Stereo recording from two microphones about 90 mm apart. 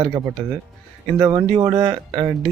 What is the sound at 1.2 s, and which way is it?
Speech, 45° right (ahead or behind).